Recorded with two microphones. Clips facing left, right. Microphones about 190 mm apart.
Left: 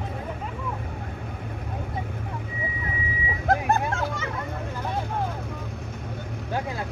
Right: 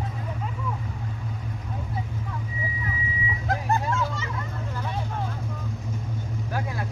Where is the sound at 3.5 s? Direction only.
55° left (ahead or behind).